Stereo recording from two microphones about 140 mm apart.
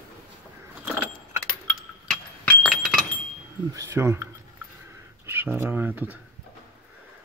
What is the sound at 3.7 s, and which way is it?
Speech, 20° right (ahead or behind).